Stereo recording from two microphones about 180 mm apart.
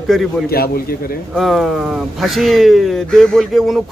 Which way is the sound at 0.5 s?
55° left (ahead or behind).